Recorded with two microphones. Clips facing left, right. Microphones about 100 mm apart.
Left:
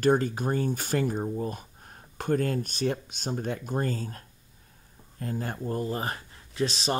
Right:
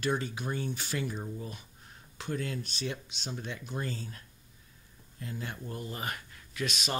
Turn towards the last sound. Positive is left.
turn(degrees=30)  # may be behind; listen again after turning